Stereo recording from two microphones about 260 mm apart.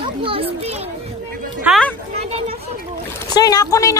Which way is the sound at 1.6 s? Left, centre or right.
Centre.